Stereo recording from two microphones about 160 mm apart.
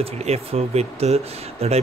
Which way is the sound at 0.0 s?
40° right (ahead or behind).